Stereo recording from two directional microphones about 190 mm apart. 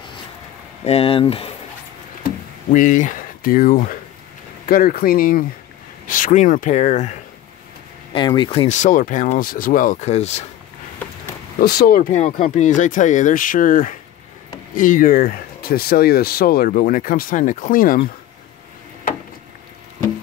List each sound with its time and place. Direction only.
0.8 s speech: 30° left (ahead or behind)
2.2 s a sound: 40° left (ahead or behind)
4.6 s speech: 50° left (ahead or behind)
8.1 s speech: 25° left (ahead or behind)
11.6 s speech: 55° left (ahead or behind)